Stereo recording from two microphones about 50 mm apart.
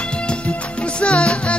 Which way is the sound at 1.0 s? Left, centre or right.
Left.